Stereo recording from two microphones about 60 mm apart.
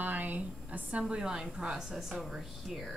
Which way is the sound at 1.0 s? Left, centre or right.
Centre.